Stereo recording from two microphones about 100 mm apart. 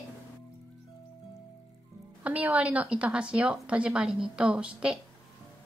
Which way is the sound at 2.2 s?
15° right (ahead or behind).